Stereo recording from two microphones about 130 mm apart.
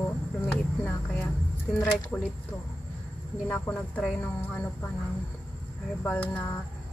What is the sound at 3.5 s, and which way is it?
A woman's voice, 10° left (ahead or behind).